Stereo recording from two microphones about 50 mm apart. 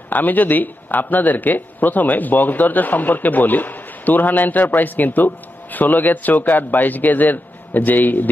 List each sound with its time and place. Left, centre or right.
0.1 s speech: left